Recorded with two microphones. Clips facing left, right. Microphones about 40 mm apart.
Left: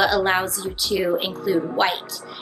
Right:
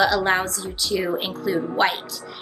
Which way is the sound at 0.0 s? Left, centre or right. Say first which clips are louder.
Even; centre.